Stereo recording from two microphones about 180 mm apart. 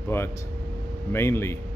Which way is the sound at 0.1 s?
15° left (ahead or behind).